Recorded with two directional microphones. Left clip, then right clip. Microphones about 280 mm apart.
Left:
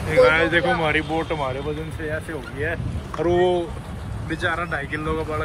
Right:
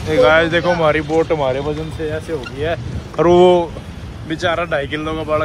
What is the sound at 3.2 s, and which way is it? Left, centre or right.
Speech, right.